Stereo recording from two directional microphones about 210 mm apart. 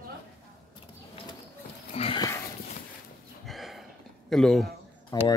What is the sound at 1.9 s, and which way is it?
Sniff, 25° left (ahead or behind).